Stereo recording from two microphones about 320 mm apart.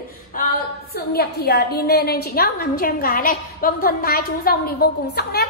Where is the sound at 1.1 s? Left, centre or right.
Left.